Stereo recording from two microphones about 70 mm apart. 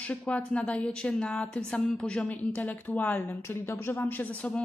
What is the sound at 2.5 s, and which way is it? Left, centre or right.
A woman's voice, left.